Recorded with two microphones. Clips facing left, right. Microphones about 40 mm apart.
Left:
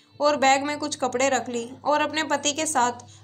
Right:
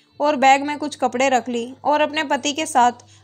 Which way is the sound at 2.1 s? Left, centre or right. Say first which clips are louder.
Right 4 dB; right.